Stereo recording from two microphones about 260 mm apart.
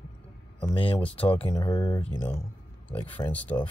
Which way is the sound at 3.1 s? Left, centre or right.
Centre.